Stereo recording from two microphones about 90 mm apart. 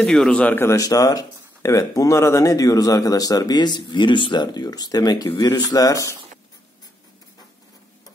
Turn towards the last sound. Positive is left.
turn(degrees=35)  # may be behind; listen again after turning